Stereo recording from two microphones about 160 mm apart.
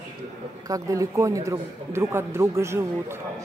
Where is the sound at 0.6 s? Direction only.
20° right (ahead or behind).